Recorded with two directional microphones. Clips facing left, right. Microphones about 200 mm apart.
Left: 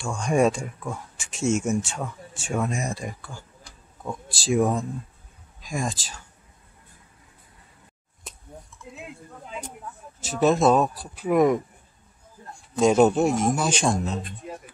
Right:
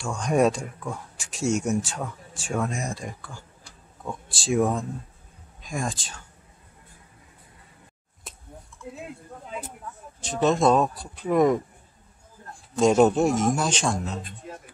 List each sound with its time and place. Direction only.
0.0 s speech: centre (ahead or behind)
4.0 s speech: centre (ahead or behind)
8.3 s a sound: centre (ahead or behind)
10.2 s speech: 5° left (ahead or behind)
12.7 s speech: centre (ahead or behind)
14.4 s speech: 15° left (ahead or behind)